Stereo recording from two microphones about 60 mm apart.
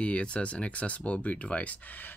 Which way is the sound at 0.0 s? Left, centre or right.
Centre.